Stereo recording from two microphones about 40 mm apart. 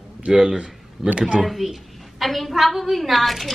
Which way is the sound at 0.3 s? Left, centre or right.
Centre.